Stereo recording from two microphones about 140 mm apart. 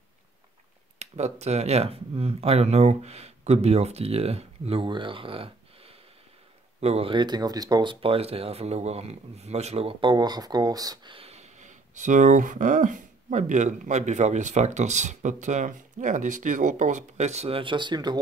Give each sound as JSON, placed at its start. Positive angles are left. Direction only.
{"t": 0.9, "sound": "speech", "side_deg": -50}
{"t": 11.1, "sound": "speech", "side_deg": -50}